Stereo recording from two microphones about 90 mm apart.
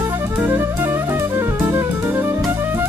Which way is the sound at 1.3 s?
25° right (ahead or behind).